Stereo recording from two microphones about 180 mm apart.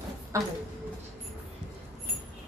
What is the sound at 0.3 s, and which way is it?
Speech, 15° right (ahead or behind).